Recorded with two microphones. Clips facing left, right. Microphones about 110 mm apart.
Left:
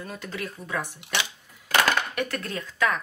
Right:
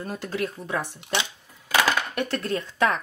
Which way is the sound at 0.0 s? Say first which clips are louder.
Right 5 dB; 35° right (ahead or behind).